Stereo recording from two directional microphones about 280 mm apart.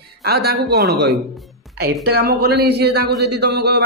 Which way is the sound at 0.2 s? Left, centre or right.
Right.